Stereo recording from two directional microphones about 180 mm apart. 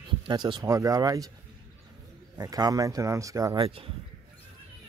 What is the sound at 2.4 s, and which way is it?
Speech, 20° right (ahead or behind).